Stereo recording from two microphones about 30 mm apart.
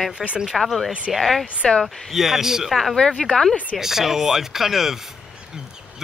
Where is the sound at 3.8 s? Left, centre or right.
Centre.